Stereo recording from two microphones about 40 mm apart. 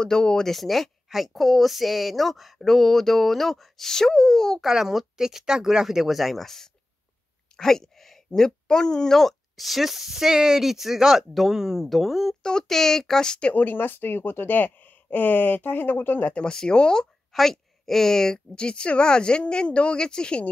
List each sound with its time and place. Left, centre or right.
0.0 s speech: centre
0.6 s speech: centre
4.7 s speech: centre
7.5 s a sound: centre
8.3 s speech: centre
9.6 s speech: centre
13.6 s speech: left
16.4 s a woman's voice: left
17.3 s a woman's voice: centre; by 20.4 s left